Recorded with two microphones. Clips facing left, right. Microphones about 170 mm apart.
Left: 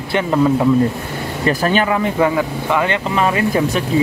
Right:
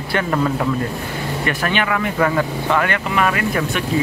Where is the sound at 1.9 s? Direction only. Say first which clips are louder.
Left 2 dB; 20° left (ahead or behind).